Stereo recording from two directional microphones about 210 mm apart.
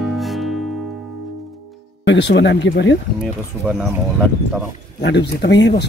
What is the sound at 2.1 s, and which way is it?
Speech, 55° left (ahead or behind).